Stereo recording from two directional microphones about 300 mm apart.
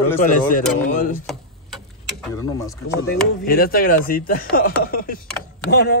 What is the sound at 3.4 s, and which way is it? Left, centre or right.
Speech, left.